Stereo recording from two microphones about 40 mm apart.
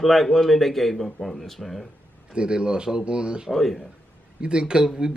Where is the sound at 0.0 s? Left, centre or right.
Centre.